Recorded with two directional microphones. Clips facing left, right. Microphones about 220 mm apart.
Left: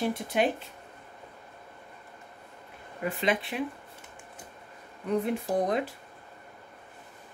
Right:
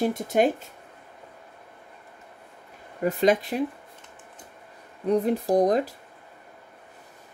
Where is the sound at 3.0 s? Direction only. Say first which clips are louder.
Right 7 dB; 40° right (ahead or behind).